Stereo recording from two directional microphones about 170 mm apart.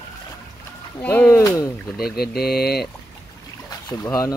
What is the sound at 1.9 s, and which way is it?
Speech, 65° left (ahead or behind).